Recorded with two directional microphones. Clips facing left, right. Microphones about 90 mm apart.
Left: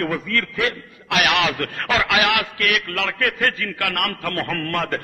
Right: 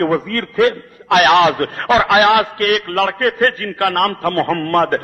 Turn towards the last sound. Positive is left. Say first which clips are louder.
# right 9 dB
turn(degrees=-45)  # may be behind; listen again after turning